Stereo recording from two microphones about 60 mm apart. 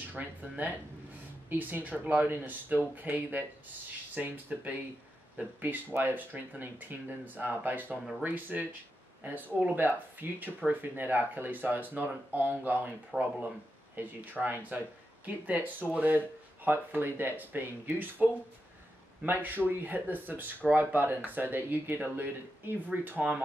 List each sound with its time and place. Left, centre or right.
0.0 s speech: right
13.1 s speech: centre
14.0 s speech: right